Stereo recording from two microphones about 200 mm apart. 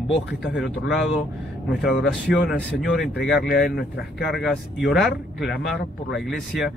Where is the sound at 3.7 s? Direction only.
55° left (ahead or behind).